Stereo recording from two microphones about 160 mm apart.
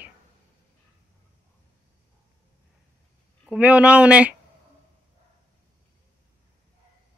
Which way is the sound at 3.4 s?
5° right (ahead or behind).